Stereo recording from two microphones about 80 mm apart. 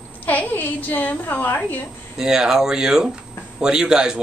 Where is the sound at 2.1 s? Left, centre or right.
Centre.